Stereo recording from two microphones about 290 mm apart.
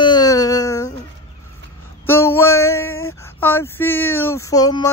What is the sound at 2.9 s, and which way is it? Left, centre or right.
Female singing, left.